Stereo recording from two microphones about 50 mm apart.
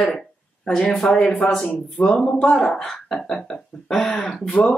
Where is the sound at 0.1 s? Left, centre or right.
Centre.